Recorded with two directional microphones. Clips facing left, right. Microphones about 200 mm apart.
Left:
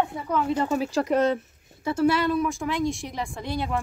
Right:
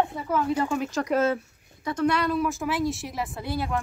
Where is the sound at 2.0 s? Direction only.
5° left (ahead or behind).